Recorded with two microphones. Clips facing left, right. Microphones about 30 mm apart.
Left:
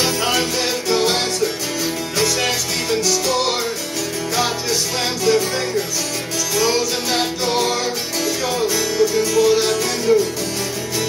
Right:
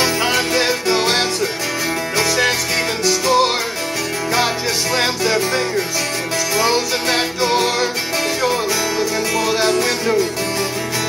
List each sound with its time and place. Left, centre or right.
0.2 s music: right
0.6 s music: right
4.9 s music: right
6.5 s music: right
9.3 s music: right